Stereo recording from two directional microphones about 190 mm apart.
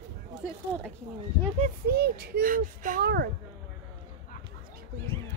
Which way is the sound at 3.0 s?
60° right (ahead or behind).